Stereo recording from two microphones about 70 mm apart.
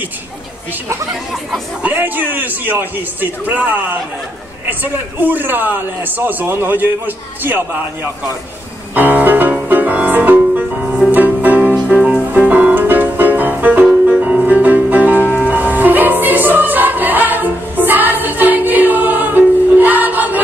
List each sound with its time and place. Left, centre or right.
1.8 s a man's voice: right
5.2 s a man's voice: right
8.9 s music: right